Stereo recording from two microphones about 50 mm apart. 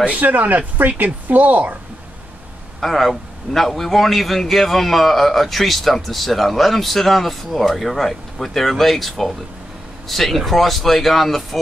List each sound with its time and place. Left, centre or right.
0.0 s speech: right
2.8 s a man's voice: centre